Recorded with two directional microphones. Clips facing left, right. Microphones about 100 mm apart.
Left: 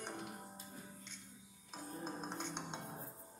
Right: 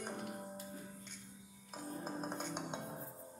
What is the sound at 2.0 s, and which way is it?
Music, 5° right (ahead or behind).